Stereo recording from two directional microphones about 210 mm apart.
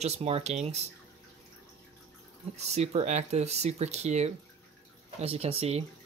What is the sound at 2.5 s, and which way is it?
Speech, 30° right (ahead or behind).